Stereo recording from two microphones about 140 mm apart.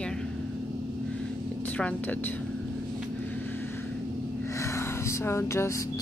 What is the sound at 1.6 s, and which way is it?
Speech, 10° left (ahead or behind).